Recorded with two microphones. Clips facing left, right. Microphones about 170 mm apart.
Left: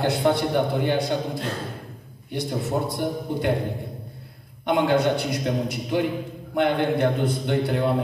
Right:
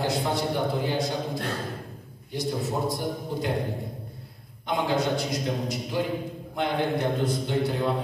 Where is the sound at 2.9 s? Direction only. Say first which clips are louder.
Left 3 dB; 60° left (ahead or behind).